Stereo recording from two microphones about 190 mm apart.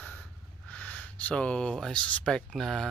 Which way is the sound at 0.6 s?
5° left (ahead or behind).